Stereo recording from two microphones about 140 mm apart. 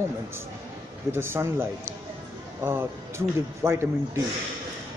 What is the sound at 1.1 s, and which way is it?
A man's voice, 15° right (ahead or behind).